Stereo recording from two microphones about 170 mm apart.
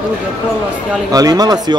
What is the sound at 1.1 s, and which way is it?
Speech, 20° right (ahead or behind).